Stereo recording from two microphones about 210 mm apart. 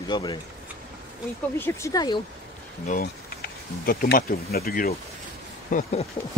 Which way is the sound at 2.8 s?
45° left (ahead or behind).